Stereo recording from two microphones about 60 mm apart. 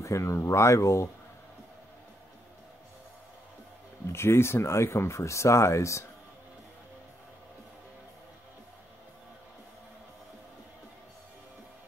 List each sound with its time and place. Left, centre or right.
0.0 s speech: left
4.1 s speech: left